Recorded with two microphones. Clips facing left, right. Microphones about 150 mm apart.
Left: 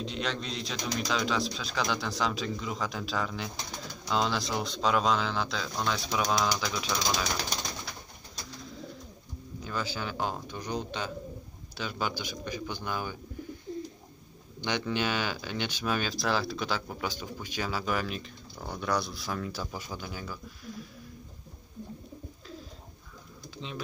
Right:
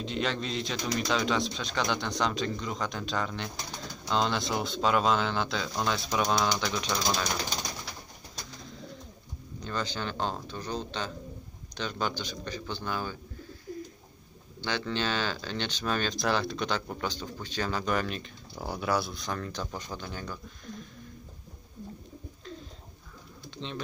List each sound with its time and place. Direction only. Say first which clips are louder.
0.0 s speech: right 2 dB; centre (ahead or behind)
9.6 s speech: right 1 dB; 5° left (ahead or behind)
13.7 s bird: left 1 dB; 25° left (ahead or behind)
14.6 s speech: left 1 dB; 15° left (ahead or behind)
18.6 s speech: right 2 dB; 10° right (ahead or behind)
23.6 s speech: right 2 dB; 5° left (ahead or behind)